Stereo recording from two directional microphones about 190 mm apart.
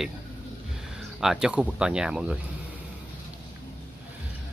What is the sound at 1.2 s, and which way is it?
Speech, 5° right (ahead or behind).